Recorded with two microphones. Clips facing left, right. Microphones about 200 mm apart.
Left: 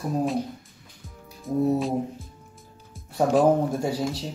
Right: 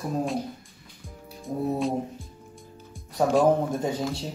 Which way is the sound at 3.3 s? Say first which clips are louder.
Left 1 dB; 5° left (ahead or behind).